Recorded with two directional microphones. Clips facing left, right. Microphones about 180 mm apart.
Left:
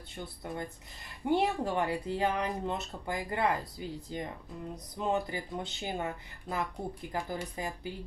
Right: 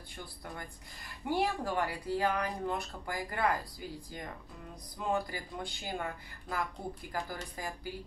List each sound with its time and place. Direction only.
0.1 s speech: 25° left (ahead or behind)